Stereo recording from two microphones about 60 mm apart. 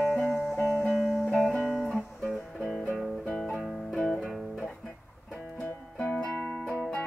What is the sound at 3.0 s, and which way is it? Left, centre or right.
Guitar, centre.